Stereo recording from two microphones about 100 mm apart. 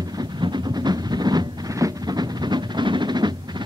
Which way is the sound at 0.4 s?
45° right (ahead or behind).